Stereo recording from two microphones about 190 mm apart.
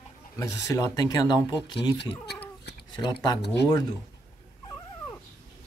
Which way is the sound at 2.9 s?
20° left (ahead or behind).